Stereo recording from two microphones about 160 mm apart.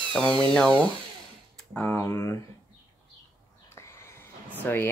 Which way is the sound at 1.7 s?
10° left (ahead or behind).